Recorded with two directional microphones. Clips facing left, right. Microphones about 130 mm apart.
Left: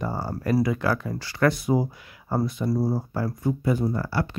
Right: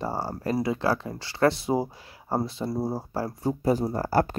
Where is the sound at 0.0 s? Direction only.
30° right (ahead or behind).